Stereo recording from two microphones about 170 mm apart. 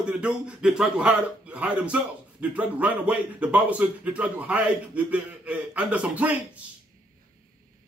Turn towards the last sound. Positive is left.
turn(degrees=-10)  # may be behind; listen again after turning